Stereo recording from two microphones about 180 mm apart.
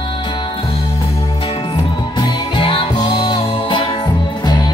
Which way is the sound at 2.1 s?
25° left (ahead or behind).